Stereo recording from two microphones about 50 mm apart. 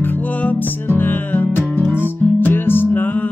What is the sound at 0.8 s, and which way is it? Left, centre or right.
Music, left.